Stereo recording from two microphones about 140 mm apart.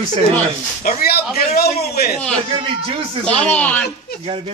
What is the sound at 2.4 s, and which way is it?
Speech, 40° right (ahead or behind).